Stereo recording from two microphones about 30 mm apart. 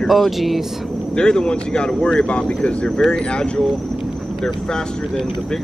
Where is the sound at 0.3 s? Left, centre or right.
Centre.